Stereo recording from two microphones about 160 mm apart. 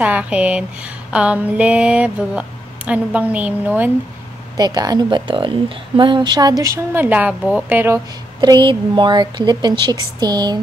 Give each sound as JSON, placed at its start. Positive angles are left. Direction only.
{"t": 0.0, "sound": "speech", "side_deg": -10}
{"t": 4.6, "sound": "speech", "side_deg": -25}
{"t": 8.4, "sound": "speech", "side_deg": -30}